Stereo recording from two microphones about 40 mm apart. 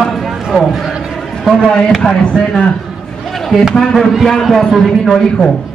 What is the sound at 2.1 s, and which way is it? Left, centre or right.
Speech, left.